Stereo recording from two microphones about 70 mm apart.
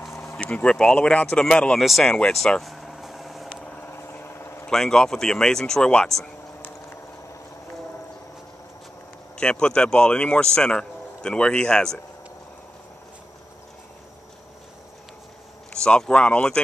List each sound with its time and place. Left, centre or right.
0.1 s vehicle: left
0.4 s a man's voice: centre
1.8 s speech: centre
2.0 s a man's voice: centre
2.3 s vehicle: centre
3.8 s vehicle: left
4.6 s a man's voice: centre
9.4 s a man's voice: centre
15.7 s a man's voice: centre